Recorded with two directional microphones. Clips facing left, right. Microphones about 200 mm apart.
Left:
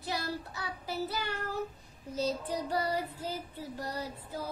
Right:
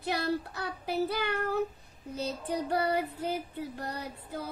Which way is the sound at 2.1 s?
60° right (ahead or behind).